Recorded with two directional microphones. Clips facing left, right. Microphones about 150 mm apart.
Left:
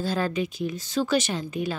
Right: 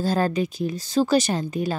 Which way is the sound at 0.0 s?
40° right (ahead or behind).